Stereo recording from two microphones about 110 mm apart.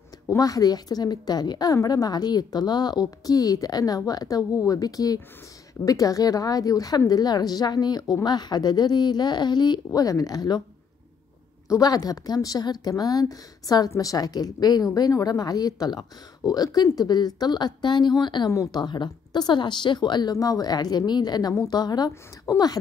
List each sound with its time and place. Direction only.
0.4 s a woman's voice: 35° left (ahead or behind)
11.7 s a woman's voice: 35° left (ahead or behind)
18.5 s a woman's voice: 30° left (ahead or behind)
18.8 s a woman's voice: 45° left (ahead or behind)